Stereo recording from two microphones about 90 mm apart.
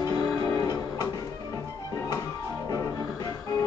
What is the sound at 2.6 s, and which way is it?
Music, 40° left (ahead or behind).